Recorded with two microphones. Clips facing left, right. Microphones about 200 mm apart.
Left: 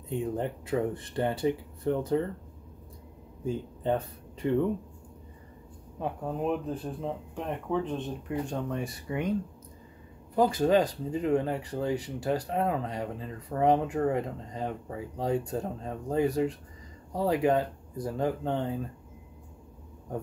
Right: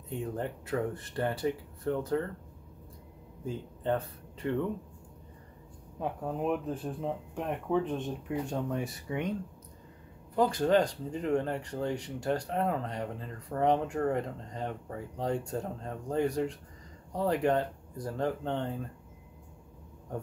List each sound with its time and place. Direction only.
0.2 s speech: 15° left (ahead or behind)
3.4 s speech: 15° left (ahead or behind)
5.9 s speech: 5° right (ahead or behind)
10.3 s speech: 5° left (ahead or behind)